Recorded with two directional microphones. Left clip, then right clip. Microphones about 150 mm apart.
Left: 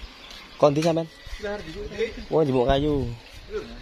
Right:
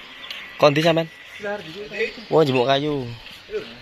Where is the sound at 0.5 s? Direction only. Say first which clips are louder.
Right 4 dB; centre (ahead or behind).